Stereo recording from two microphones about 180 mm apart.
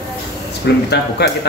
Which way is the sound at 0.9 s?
70° left (ahead or behind).